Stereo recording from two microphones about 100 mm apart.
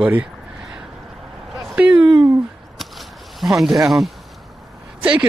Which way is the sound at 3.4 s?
Centre (ahead or behind).